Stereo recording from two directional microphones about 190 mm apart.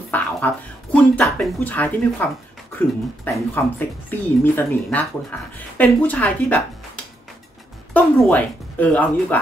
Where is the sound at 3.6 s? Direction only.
10° left (ahead or behind).